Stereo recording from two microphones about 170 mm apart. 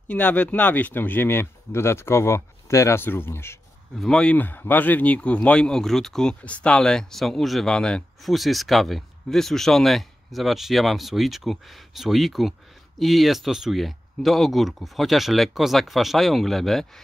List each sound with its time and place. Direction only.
0.1 s a man's voice: 10° left (ahead or behind)